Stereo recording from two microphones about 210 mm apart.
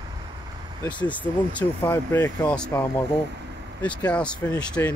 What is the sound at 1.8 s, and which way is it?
Speech, 15° left (ahead or behind).